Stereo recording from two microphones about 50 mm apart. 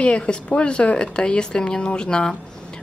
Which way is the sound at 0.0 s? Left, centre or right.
Left.